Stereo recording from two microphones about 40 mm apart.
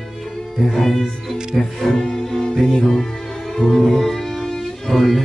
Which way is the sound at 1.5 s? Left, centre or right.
Centre.